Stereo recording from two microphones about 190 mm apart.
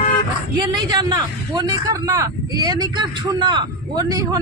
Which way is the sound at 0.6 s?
20° right (ahead or behind).